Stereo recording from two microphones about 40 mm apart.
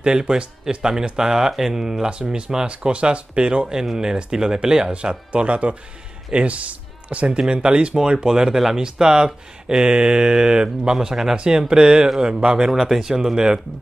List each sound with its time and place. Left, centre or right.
0.0 s speech: centre
2.0 s speech: right
5.3 s speech: right
7.2 s speech: right
12.6 s speech: centre